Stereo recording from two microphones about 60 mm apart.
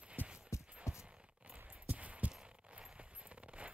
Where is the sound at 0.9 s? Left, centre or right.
Left.